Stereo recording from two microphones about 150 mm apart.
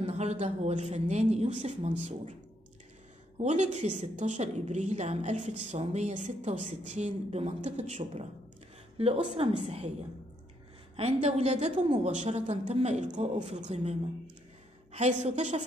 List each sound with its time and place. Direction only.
0.0 s a woman's voice: 45° right (ahead or behind)
3.3 s a woman's voice: 50° right (ahead or behind)
8.9 s a woman's voice: 40° right (ahead or behind)
11.0 s a woman's voice: 45° right (ahead or behind)